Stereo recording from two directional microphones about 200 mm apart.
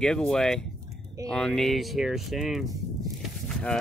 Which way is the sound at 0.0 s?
5° left (ahead or behind).